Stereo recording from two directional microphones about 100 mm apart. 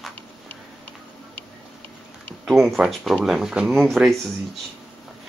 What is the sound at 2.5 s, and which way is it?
Speech, 5° right (ahead or behind).